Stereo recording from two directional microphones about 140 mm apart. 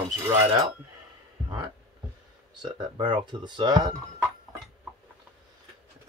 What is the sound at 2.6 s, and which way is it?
Speech, 35° right (ahead or behind).